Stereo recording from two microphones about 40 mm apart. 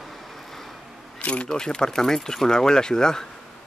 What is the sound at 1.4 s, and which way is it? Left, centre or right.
Speech, centre.